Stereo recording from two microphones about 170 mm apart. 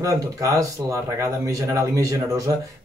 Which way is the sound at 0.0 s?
20° right (ahead or behind).